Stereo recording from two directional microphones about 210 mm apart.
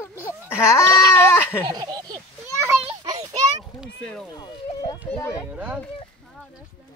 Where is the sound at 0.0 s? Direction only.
10° left (ahead or behind).